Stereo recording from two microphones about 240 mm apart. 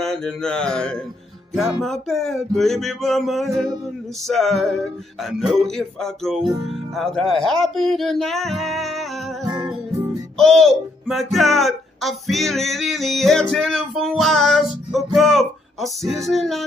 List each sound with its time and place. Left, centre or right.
0.0 s music: centre
6.6 s speech: centre
9.5 s music: centre
10.3 s speech: centre
11.1 s music: centre